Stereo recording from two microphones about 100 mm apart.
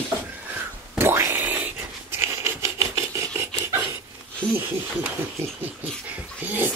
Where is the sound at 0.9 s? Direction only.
25° right (ahead or behind).